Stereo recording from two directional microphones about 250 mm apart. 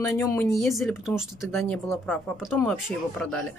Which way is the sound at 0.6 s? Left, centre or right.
Centre.